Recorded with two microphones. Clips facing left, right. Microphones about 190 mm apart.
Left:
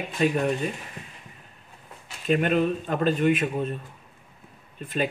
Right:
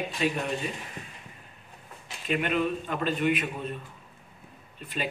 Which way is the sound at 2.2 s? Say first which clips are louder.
Left 5 dB; 40° left (ahead or behind).